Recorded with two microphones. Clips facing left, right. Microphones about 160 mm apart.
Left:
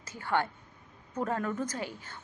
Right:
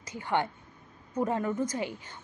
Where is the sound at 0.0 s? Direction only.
15° right (ahead or behind).